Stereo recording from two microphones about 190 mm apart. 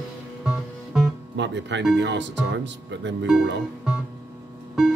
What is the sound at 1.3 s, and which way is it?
Speech, 70° right (ahead or behind).